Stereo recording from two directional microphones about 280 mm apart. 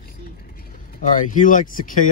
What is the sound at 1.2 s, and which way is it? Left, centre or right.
Speech, left.